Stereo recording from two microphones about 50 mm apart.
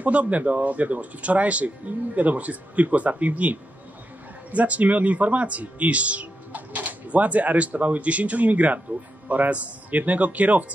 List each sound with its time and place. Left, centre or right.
0.0 s speech: right